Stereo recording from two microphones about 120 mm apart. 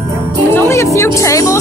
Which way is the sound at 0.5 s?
20° left (ahead or behind).